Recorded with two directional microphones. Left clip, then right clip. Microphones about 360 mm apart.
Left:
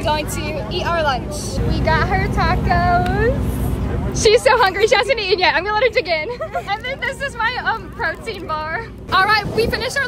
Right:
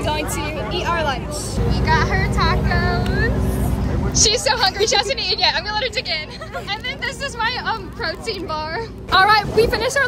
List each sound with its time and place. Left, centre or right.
0.7 s a woman's voice: centre
7.3 s speech: centre
9.1 s speech: centre